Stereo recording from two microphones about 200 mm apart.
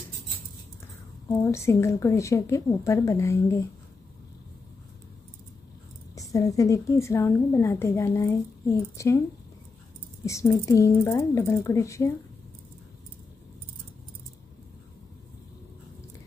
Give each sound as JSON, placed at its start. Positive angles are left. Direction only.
{"t": 1.3, "sound": "a woman's voice", "side_deg": 15}
{"t": 6.1, "sound": "a woman's voice", "side_deg": 15}
{"t": 10.2, "sound": "a woman's voice", "side_deg": 15}